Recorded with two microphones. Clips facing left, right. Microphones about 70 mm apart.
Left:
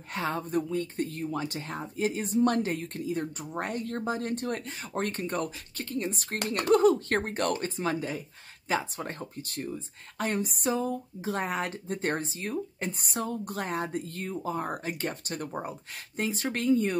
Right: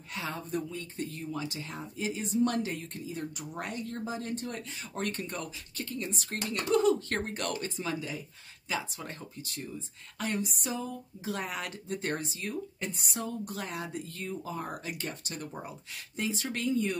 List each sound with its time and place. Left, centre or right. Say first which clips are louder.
0.1 s speech: left 6 dB; left
6.3 s speech: left 4 dB; left